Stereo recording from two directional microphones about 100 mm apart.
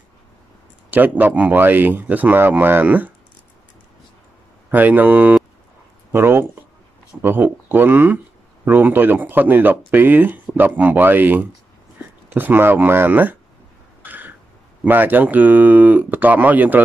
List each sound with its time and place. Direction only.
0.8 s speech: 20° right (ahead or behind)
4.6 s speech: 20° right (ahead or behind)
14.0 s cough: 20° right (ahead or behind)
14.9 s speech: 20° right (ahead or behind)